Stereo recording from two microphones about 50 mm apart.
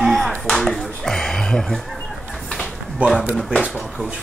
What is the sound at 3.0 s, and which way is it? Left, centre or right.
Speech, right.